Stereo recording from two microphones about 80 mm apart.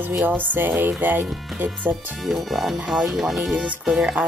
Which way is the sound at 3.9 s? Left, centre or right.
Centre.